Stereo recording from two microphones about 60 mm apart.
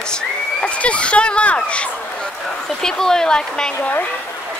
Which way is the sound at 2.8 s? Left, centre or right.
Centre.